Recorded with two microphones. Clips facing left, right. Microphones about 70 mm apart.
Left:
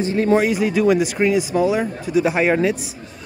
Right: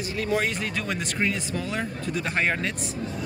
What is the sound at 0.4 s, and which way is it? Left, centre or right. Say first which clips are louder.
Speech: left 10 dB; centre.